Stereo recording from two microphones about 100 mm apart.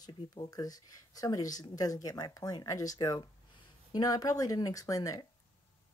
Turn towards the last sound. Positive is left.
turn(degrees=35)  # may be behind; listen again after turning